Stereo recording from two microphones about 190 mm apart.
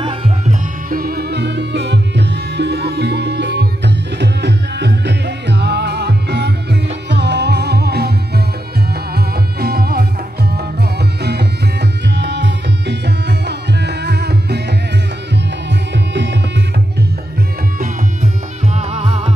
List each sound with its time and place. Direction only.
0.0 s music: 30° right (ahead or behind)
0.8 s music: 50° right (ahead or behind)
9.1 s music: 55° right (ahead or behind)
15.9 s music: 65° right (ahead or behind)
17.7 s music: 35° right (ahead or behind)